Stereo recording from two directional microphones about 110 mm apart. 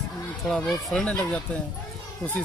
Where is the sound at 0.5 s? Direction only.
10° left (ahead or behind).